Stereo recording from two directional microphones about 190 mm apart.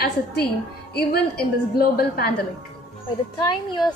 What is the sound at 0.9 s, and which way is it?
A woman's voice, 55° left (ahead or behind).